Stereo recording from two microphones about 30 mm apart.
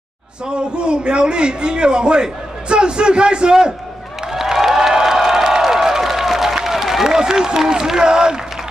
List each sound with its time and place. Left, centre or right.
0.7 s a man's voice: right
4.3 s a sound: centre
7.2 s speech: right